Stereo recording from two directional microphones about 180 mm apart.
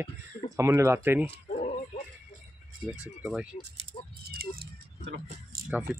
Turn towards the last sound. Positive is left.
turn(degrees=-5)  # may be behind; listen again after turning